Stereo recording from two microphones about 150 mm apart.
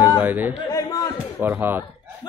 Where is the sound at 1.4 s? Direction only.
15° right (ahead or behind).